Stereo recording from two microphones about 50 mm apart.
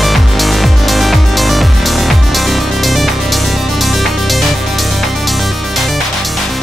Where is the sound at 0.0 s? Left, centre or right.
Centre.